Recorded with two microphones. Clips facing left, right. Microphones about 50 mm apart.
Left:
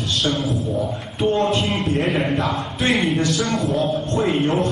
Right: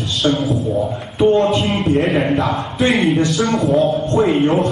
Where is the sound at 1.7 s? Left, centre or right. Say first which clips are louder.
Right 5 dB; centre.